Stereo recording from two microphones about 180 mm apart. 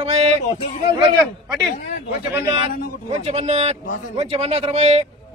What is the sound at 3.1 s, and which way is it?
A man's voice, 35° right (ahead or behind).